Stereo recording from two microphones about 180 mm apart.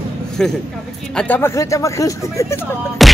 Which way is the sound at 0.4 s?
5° left (ahead or behind).